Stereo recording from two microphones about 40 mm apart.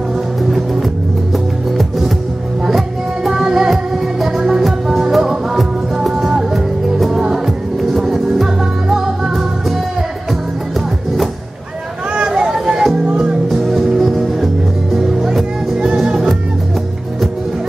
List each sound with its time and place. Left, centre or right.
0.4 s music: centre
3.3 s music: centre
12.3 s a sound: centre
12.9 s music: right
13.5 s music: centre